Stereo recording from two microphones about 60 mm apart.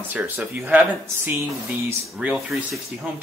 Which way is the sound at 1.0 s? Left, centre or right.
Right.